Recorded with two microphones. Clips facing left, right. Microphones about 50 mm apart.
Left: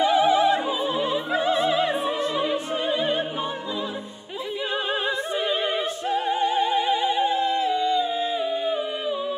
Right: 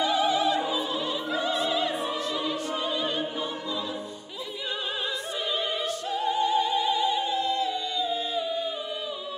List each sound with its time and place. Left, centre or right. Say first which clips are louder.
0.0 s opera: left 5 dB; left
6.0 s music: left 3 dB; left